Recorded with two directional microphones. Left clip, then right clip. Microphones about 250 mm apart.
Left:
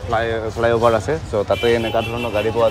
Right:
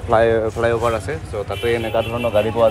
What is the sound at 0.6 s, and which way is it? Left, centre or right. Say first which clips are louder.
Speech: left 3 dB; centre.